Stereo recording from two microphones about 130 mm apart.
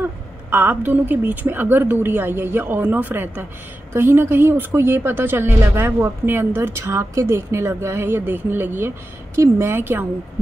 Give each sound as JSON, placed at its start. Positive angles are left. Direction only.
{"t": 0.0, "sound": "a woman's voice", "side_deg": -15}